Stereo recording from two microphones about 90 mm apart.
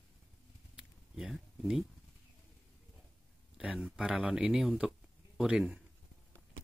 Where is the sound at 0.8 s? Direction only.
5° right (ahead or behind).